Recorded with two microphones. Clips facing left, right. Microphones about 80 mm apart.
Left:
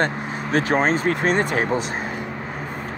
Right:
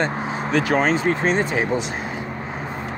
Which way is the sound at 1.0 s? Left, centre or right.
Left.